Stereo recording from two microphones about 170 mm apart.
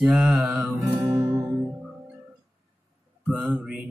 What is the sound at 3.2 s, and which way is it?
Mantra, 5° right (ahead or behind).